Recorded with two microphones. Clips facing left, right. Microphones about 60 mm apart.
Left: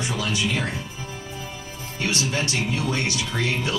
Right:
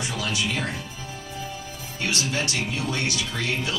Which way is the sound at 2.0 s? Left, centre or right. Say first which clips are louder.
Left 1 dB; left.